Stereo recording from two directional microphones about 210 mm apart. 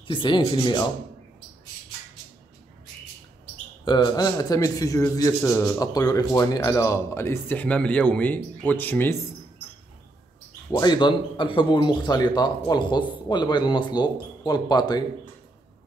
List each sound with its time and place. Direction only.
0.0 s speech: 25° left (ahead or behind)
3.8 s a man's voice: 20° left (ahead or behind)
10.7 s speech: 20° left (ahead or behind)